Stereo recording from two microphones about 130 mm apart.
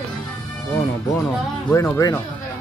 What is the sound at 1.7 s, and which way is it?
Speech, 20° left (ahead or behind).